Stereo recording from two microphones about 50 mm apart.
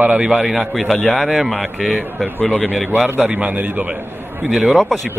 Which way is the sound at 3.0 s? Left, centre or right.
Right.